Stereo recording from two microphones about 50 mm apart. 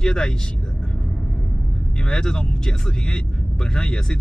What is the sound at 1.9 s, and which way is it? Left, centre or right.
Speech, centre.